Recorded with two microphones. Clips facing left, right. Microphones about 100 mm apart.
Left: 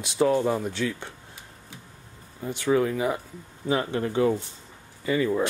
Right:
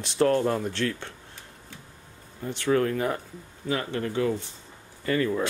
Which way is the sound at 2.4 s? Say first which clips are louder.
Left 1 dB; 10° left (ahead or behind).